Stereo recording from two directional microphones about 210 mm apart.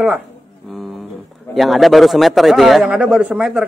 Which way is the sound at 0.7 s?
Centre (ahead or behind).